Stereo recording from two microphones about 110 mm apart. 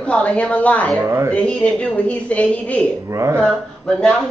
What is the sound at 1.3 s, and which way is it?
Speech, 10° left (ahead or behind).